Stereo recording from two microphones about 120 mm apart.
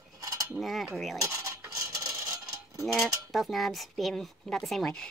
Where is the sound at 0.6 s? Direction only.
Centre (ahead or behind).